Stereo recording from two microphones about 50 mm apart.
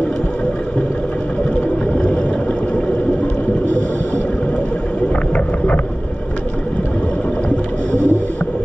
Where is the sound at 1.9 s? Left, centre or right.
Left.